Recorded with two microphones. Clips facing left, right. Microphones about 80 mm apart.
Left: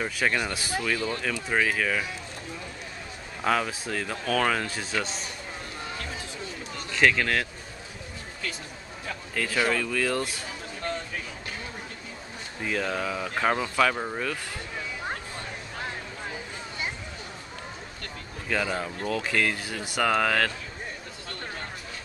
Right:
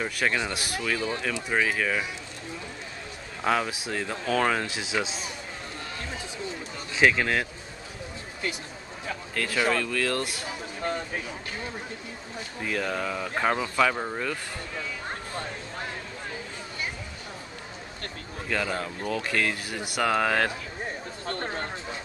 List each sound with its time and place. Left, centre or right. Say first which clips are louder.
0.0 s speech: even; centre
0.9 s speech: even; centre
3.4 s speech: even; centre
6.9 s speech: right 1 dB; centre
9.3 s speech: even; centre
12.6 s speech: left 1 dB; centre
18.5 s speech: left 1 dB; centre
21.3 s a sound: right 6 dB; right